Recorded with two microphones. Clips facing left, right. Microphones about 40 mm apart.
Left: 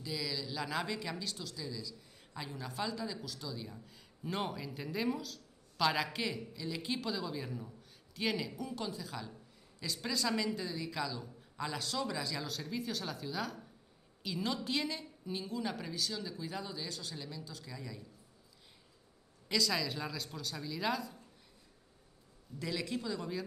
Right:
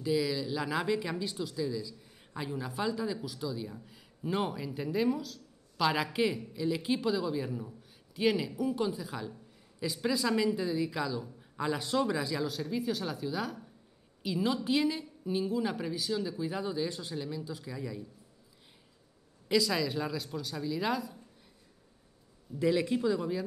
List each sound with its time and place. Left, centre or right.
0.0 s speech: centre
19.5 s speech: centre
22.6 s speech: right